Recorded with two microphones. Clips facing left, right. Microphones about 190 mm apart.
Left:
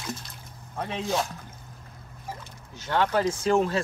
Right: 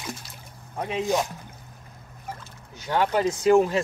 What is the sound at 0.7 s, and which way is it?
Speech, 15° right (ahead or behind).